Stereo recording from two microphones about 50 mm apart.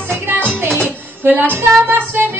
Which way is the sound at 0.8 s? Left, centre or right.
Right.